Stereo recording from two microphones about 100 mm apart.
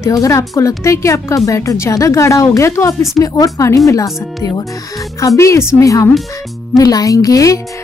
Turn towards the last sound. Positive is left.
turn(degrees=35)  # may be behind; listen again after turning